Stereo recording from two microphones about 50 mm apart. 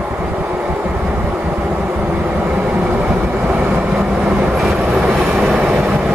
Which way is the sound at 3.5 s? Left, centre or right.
Right.